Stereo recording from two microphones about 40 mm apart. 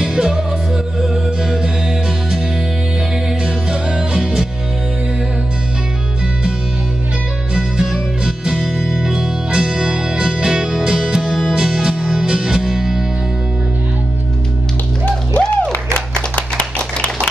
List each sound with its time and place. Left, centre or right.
0.0 s music: centre
3.4 s music: right
7.5 s music: centre
15.0 s music: left
16.3 s clapping: left